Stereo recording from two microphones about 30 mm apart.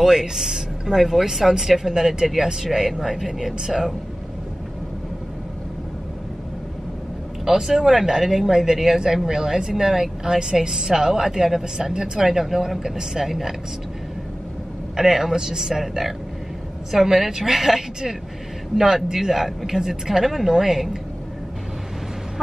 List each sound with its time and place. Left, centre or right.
0.0 s speech: centre
7.5 s speech: centre
15.0 s speech: centre
19.1 s speech: centre